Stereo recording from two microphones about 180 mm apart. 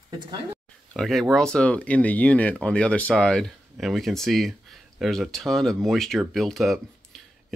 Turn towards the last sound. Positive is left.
turn(degrees=0)  # may be behind; listen again after turning